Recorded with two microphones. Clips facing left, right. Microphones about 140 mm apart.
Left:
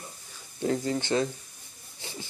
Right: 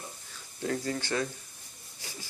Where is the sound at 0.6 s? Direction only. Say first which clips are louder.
Left 4 dB; 20° left (ahead or behind).